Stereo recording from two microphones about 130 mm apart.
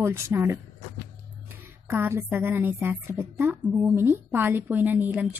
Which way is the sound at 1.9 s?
15° right (ahead or behind).